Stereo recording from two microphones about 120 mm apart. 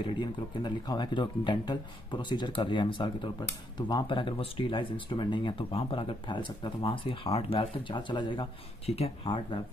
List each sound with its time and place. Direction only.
0.0 s speech: 40° left (ahead or behind)
8.8 s speech: 55° left (ahead or behind)